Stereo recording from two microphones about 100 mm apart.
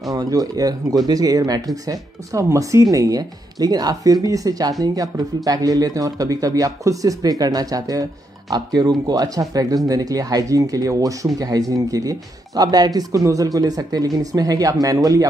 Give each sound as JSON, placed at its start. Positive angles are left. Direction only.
{"t": 0.1, "sound": "speech", "side_deg": -40}